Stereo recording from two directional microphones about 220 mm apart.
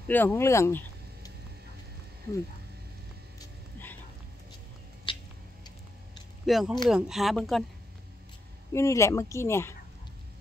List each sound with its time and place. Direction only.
0.1 s speech: 10° left (ahead or behind)
5.1 s a sound: 20° left (ahead or behind)
6.4 s speech: centre (ahead or behind)
8.7 s speech: 15° left (ahead or behind)